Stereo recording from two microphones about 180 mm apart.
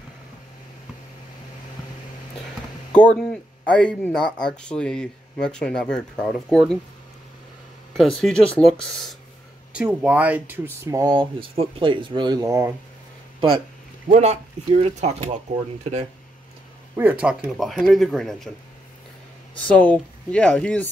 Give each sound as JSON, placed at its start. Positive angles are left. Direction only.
{"t": 2.9, "sound": "speech", "side_deg": 5}
{"t": 8.0, "sound": "speech", "side_deg": 5}
{"t": 9.8, "sound": "speech", "side_deg": -5}
{"t": 14.0, "sound": "speech", "side_deg": -40}
{"t": 16.9, "sound": "speech", "side_deg": -10}
{"t": 19.5, "sound": "speech", "side_deg": 10}